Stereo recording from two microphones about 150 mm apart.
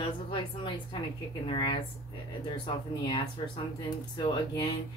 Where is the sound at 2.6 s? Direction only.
35° left (ahead or behind).